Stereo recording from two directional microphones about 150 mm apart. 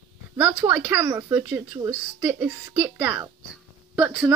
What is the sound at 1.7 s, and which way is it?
Speech, 30° right (ahead or behind).